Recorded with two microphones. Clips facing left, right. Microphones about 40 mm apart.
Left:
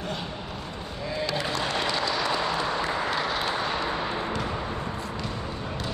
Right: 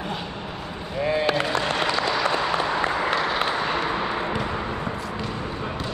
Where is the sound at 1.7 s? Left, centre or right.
Right.